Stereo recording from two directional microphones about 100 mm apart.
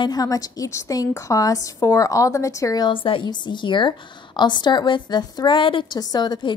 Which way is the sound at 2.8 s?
60° left (ahead or behind).